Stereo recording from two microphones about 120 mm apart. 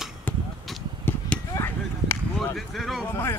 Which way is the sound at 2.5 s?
Centre (ahead or behind).